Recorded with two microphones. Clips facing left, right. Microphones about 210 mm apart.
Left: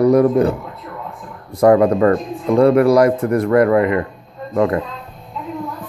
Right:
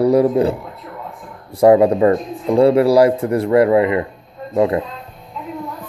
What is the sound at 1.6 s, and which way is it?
A man's voice, 25° right (ahead or behind).